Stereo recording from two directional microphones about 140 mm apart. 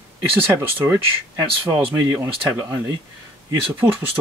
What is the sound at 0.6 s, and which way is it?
Speech, 20° right (ahead or behind).